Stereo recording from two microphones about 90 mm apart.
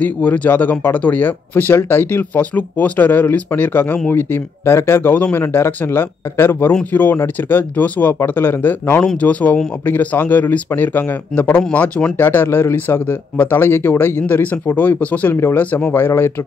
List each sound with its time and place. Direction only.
0.0 s speech: 15° left (ahead or behind)
6.7 s speech: 15° left (ahead or behind)
15.3 s speech: 30° left (ahead or behind)
15.6 s speech: 15° left (ahead or behind)